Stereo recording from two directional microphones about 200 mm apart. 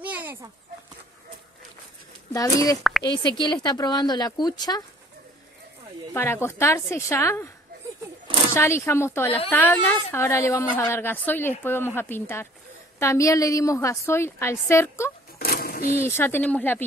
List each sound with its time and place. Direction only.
0.0 s a sound: 10° right (ahead or behind)
2.3 s a woman's voice: 15° left (ahead or behind)
6.1 s a woman's voice: 10° left (ahead or behind)
8.5 s a woman's voice: 15° left (ahead or behind)
15.3 s a sound: 50° left (ahead or behind)
16.0 s a woman's voice: 10° left (ahead or behind)